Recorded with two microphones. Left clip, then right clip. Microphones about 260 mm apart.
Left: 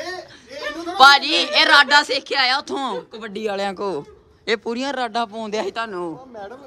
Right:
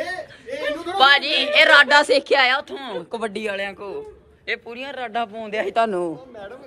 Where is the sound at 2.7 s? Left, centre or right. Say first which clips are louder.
Left 7 dB; left.